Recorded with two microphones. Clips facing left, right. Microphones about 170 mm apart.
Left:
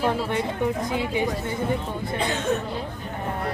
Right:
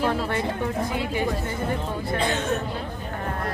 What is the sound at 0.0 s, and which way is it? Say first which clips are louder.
Speech: even; 15° left (ahead or behind).